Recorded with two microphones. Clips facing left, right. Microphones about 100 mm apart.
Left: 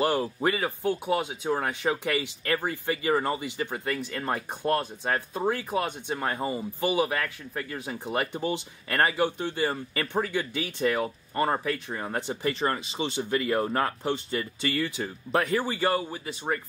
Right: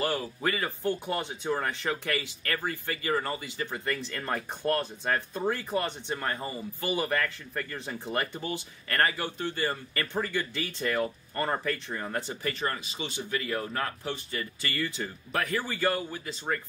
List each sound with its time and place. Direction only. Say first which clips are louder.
0.0 s speech: left 5 dB; 25° left (ahead or behind)